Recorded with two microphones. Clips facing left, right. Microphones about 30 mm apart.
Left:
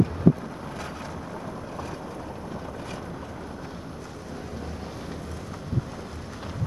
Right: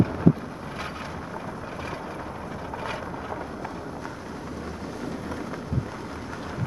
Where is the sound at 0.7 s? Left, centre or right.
Right.